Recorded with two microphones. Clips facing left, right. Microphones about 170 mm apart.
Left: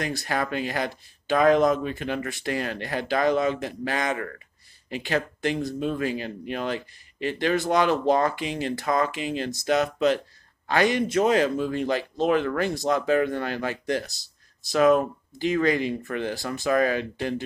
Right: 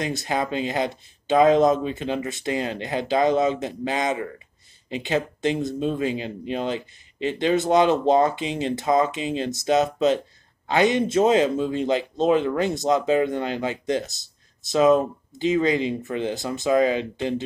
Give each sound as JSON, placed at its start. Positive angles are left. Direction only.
{"t": 0.0, "sound": "speech", "side_deg": -20}